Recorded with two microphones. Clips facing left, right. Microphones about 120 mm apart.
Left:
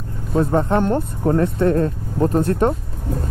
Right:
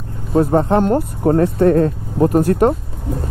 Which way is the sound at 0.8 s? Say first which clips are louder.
Right 4 dB; 15° right (ahead or behind).